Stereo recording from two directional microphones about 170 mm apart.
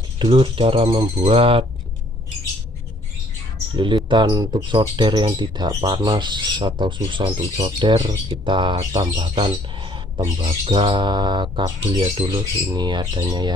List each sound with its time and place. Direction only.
0.2 s speech: 30° right (ahead or behind)
3.7 s speech: 30° right (ahead or behind)